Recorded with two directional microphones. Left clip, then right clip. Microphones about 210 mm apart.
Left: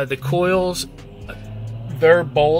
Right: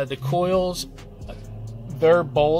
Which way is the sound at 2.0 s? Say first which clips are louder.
Left 3 dB; 15° right (ahead or behind).